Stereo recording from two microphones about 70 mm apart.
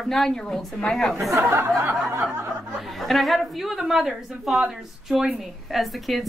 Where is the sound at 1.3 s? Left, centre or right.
Right.